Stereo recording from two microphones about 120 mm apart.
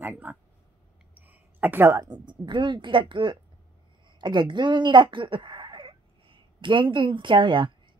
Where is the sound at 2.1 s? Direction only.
40° right (ahead or behind).